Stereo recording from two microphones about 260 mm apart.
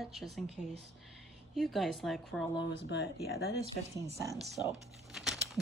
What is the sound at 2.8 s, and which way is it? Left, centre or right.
Speech, left.